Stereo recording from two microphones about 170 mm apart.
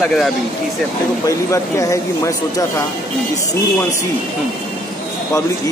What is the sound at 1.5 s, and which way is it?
Speech, 20° left (ahead or behind).